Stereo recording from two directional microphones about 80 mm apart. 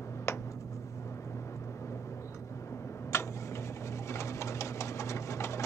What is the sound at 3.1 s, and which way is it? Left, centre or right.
Tick-tock, left.